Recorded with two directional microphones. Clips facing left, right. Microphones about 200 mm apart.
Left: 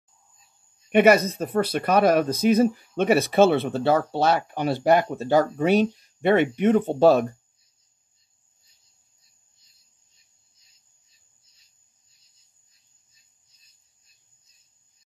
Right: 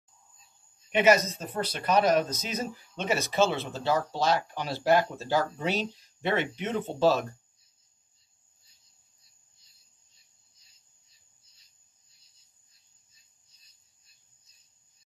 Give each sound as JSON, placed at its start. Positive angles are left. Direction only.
{"t": 0.9, "sound": "speech", "side_deg": 55}